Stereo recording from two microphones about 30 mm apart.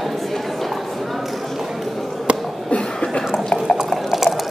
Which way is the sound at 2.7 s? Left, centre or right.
Left.